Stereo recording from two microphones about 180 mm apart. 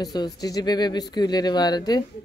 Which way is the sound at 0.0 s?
20° left (ahead or behind).